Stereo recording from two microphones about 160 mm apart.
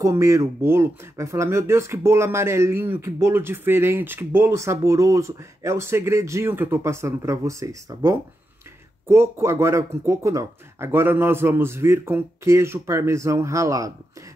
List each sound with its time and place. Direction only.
0.0 s speech: 20° right (ahead or behind)